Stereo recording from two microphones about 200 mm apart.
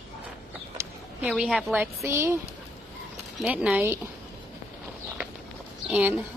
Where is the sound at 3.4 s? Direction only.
5° right (ahead or behind).